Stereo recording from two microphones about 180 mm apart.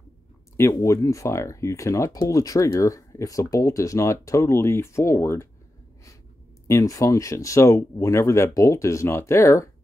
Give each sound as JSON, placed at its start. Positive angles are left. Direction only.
{"t": 0.6, "sound": "speech", "side_deg": 15}
{"t": 6.7, "sound": "speech", "side_deg": 20}